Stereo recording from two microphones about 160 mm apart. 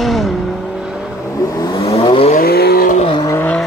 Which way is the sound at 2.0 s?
35° left (ahead or behind).